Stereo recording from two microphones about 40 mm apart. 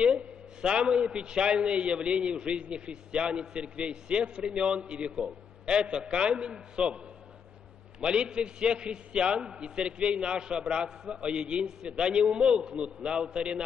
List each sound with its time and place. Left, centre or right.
0.0 s a man's voice: right
8.0 s a man's voice: right